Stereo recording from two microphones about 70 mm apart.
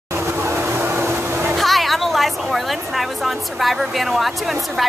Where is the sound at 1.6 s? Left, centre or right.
Centre.